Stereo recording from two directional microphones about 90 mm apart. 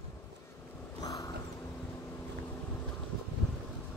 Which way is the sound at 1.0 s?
45° left (ahead or behind).